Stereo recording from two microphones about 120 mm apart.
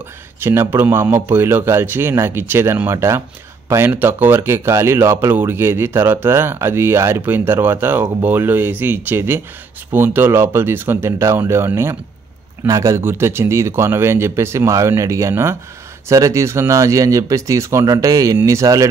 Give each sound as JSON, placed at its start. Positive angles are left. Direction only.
{"t": 0.4, "sound": "speech", "side_deg": -20}